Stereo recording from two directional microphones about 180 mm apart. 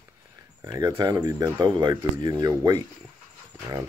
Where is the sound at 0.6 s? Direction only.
20° right (ahead or behind).